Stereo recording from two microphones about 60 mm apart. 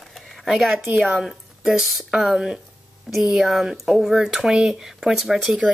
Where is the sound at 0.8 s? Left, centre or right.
Right.